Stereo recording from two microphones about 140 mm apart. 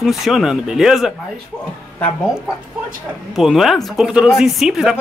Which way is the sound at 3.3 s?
Centre (ahead or behind).